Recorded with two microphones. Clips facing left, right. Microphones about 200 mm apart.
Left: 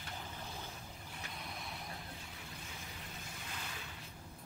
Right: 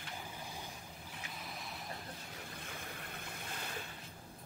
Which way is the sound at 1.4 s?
Centre (ahead or behind).